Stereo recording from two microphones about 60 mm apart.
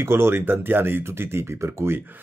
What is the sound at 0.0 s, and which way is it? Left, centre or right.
Speech, right.